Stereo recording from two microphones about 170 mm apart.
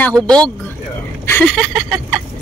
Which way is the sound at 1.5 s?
Centre (ahead or behind).